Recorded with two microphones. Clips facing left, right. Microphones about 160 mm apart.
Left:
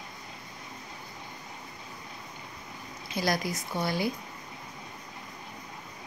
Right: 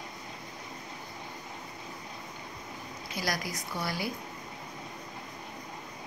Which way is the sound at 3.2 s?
25° left (ahead or behind).